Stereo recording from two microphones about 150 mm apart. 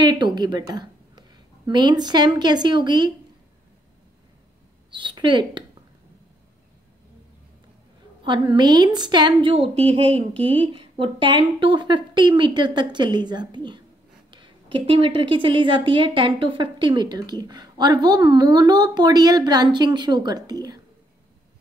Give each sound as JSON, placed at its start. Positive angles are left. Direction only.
{"t": 0.0, "sound": "a woman's voice", "side_deg": -30}
{"t": 4.9, "sound": "a woman's voice", "side_deg": -30}
{"t": 8.2, "sound": "a woman's voice", "side_deg": -30}